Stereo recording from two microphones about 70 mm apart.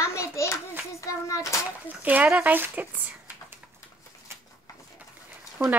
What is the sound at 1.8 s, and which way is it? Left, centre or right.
Speech, right.